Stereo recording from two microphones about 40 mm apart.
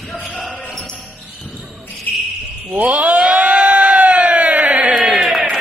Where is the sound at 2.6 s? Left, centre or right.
Right.